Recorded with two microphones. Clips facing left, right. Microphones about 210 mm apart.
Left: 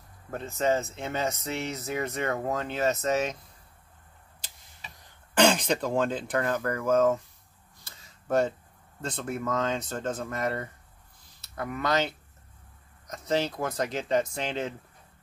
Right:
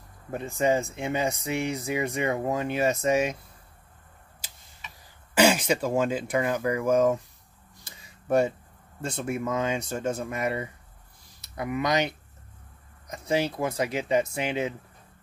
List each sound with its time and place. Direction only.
0.3 s speech: 10° right (ahead or behind)
4.8 s cough: 35° left (ahead or behind)
5.3 s speech: 10° right (ahead or behind)
7.8 s a sound: 15° right (ahead or behind)
9.0 s speech: 10° right (ahead or behind)